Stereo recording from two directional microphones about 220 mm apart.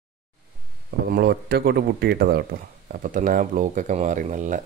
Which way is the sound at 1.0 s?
45° right (ahead or behind).